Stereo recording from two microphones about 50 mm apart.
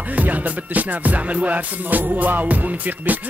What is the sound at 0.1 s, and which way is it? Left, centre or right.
Music, right.